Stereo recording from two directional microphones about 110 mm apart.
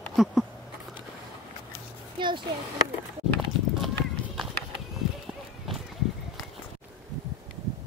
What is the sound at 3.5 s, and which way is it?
Clip-clop, 50° right (ahead or behind).